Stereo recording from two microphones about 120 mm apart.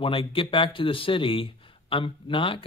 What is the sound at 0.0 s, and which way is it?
A man's voice, 45° left (ahead or behind).